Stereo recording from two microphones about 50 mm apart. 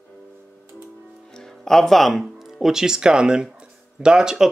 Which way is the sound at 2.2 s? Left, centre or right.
Centre.